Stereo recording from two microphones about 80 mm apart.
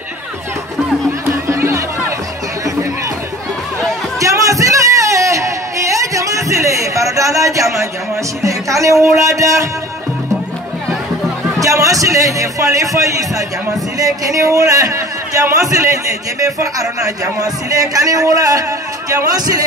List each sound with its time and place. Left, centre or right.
1.5 s music: right
4.2 s a sound: right
8.5 s music: right
9.3 s a man's voice: right
11.6 s a man's voice: right